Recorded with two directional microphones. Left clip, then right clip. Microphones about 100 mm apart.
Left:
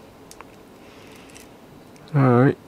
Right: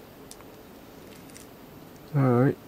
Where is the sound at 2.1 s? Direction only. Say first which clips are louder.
Left 6 dB; 20° left (ahead or behind).